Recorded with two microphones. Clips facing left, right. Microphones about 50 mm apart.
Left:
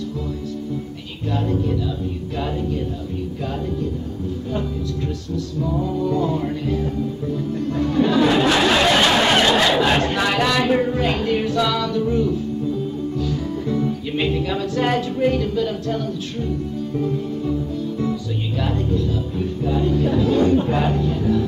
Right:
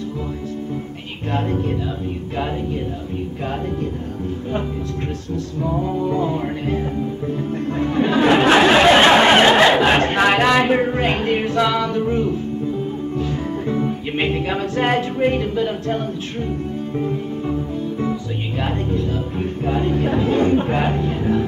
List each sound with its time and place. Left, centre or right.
1.3 s speech: right
5.6 s music: right
7.6 s speech: right
13.2 s music: right
16.9 s speech: right
18.6 s speech: right